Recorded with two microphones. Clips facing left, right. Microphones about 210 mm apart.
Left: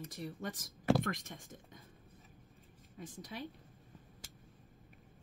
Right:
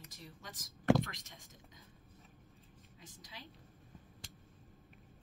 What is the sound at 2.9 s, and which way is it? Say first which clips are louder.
Speech: left 10 dB; 55° left (ahead or behind).